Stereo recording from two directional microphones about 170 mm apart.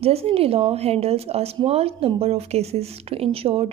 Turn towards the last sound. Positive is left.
turn(degrees=-35)  # may be behind; listen again after turning